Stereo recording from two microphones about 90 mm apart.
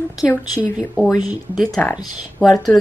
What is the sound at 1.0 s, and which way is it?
Speech, 15° right (ahead or behind).